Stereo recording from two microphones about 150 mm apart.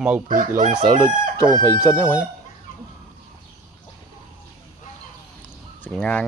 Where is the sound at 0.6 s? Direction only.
60° right (ahead or behind).